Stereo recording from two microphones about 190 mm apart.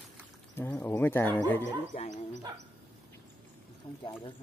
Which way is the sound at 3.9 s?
25° left (ahead or behind).